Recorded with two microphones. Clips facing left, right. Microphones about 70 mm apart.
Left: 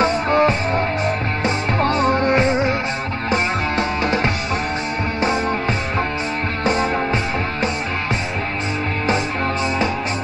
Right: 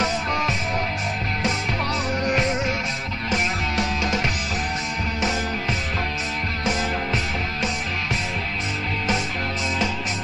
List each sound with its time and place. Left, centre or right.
0.0 s music: left